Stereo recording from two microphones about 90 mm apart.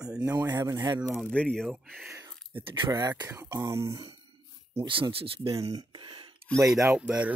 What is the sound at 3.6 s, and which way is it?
Speech, 35° right (ahead or behind).